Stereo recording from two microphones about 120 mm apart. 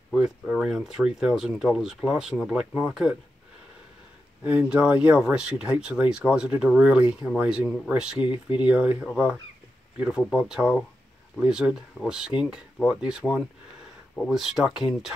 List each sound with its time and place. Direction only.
0.1 s speech: 5° right (ahead or behind)
4.4 s speech: 10° right (ahead or behind)
8.2 s speech: 45° left (ahead or behind)
8.6 s speech: 10° right (ahead or behind)